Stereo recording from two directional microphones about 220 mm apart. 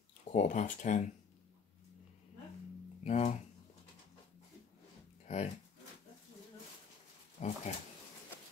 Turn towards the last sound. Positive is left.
turn(degrees=35)  # may be behind; listen again after turning